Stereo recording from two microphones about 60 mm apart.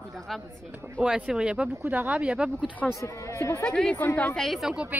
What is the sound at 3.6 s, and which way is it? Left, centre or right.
Speech, centre.